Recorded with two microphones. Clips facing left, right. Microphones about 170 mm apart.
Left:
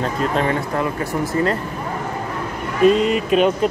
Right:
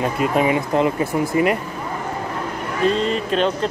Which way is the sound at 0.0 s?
10° right (ahead or behind).